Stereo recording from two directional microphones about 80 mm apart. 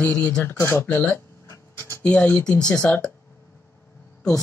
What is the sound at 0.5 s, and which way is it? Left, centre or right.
Speech, left.